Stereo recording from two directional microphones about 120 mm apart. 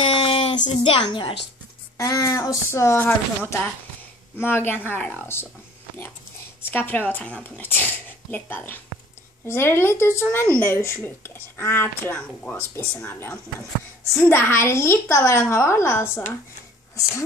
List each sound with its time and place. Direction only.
0.0 s a sound: 50° left (ahead or behind)
0.8 s a woman's voice: 45° left (ahead or behind)
2.0 s speech: 30° left (ahead or behind)
6.7 s speech: 15° left (ahead or behind)